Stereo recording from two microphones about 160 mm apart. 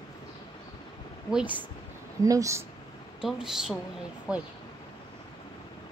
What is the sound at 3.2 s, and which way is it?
Speech, 5° right (ahead or behind).